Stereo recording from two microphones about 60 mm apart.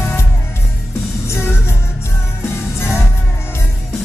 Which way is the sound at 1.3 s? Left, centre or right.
Left.